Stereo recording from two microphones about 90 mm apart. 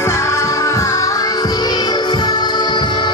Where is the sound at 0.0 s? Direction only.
30° left (ahead or behind).